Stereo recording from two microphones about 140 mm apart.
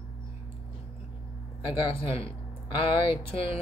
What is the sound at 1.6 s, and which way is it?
Speech, 35° left (ahead or behind).